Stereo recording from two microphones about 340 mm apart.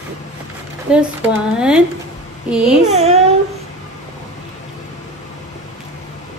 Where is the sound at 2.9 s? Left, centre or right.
Centre.